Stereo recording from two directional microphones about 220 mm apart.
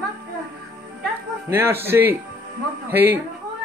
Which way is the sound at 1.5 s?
10° right (ahead or behind).